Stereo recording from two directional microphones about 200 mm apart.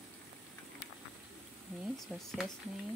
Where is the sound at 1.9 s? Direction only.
Centre (ahead or behind).